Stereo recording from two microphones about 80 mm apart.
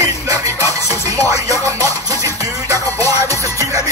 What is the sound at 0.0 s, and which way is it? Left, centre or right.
Music, right.